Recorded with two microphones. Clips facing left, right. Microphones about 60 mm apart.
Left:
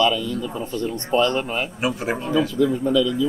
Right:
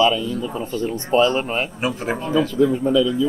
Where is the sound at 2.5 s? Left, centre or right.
Right.